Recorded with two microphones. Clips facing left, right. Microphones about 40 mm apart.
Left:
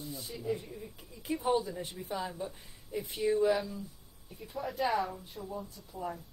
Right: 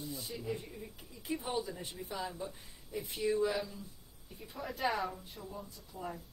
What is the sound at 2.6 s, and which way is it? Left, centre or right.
Speech, centre.